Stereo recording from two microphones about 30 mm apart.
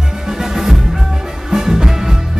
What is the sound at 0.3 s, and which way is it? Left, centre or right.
Music, centre.